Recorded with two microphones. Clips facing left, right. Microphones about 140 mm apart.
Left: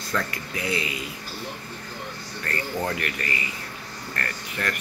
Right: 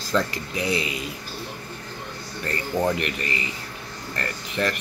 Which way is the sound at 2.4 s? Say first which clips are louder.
Right 4 dB; 20° right (ahead or behind).